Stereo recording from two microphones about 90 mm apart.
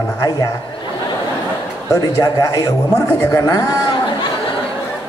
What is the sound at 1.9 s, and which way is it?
A man's voice, 35° left (ahead or behind).